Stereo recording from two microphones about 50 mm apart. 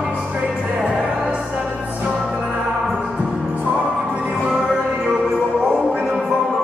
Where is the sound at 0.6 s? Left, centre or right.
Right.